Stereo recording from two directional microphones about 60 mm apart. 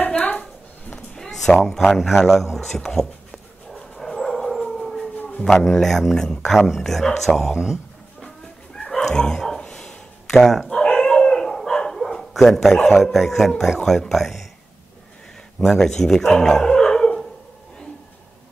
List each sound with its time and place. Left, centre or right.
0.2 s a sound: left
1.3 s speech: centre
2.8 s speech: centre
3.7 s dog: centre
5.1 s a sound: left
5.6 s speech: centre
8.7 s chicken: centre
9.0 s bow-wow: centre
9.6 s a sound: centre
11.0 s dog: centre
12.9 s speech: centre
15.6 s speech: centre
16.3 s dog: centre